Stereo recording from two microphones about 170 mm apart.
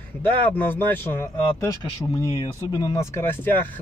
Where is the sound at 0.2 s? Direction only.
10° left (ahead or behind).